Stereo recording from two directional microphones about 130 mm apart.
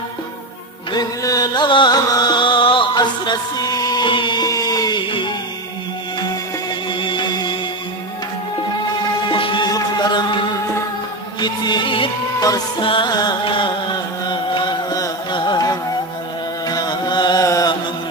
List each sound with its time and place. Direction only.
0.9 s music: 30° left (ahead or behind)
6.9 s music: 35° left (ahead or behind)
9.3 s music: 40° left (ahead or behind)
12.8 s chant: 40° left (ahead or behind)
16.6 s music: 30° left (ahead or behind)